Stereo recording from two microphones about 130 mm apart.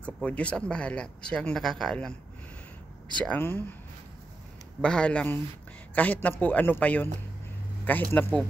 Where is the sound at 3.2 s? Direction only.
15° left (ahead or behind).